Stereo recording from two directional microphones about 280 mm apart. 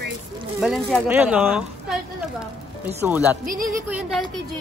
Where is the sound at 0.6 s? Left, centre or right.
Centre.